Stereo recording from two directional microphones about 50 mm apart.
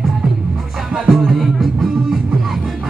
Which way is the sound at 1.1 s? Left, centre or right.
Centre.